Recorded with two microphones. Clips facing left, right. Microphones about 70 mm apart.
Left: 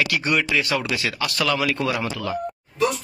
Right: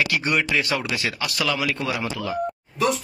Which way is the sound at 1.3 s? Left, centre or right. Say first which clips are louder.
Left 3 dB; centre.